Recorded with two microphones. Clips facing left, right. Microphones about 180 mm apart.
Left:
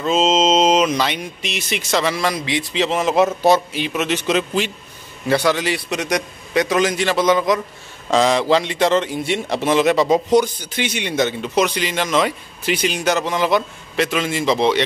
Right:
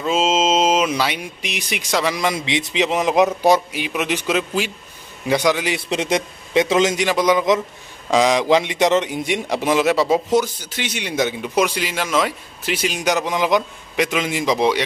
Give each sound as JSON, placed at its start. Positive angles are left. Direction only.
{"t": 0.0, "sound": "a man's voice", "side_deg": -5}
{"t": 5.8, "sound": "a man's voice", "side_deg": -25}